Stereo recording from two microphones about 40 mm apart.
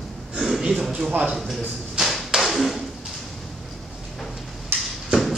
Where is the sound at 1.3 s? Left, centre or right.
Centre.